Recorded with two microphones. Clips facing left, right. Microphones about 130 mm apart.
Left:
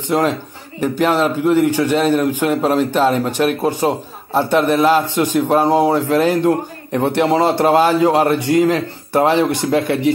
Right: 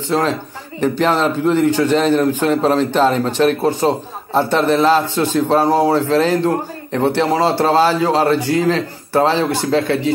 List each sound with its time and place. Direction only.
0.1 s a man's voice: 15° left (ahead or behind)